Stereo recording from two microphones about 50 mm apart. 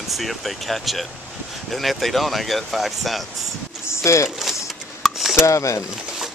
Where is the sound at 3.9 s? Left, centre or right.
Left.